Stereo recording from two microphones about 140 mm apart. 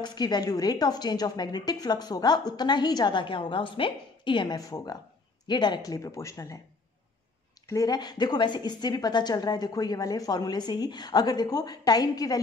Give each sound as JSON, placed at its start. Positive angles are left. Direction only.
{"t": 0.0, "sound": "a woman's voice", "side_deg": 30}
{"t": 7.6, "sound": "a woman's voice", "side_deg": 25}